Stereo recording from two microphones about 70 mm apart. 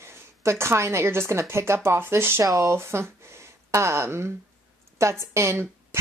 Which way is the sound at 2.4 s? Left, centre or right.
Right.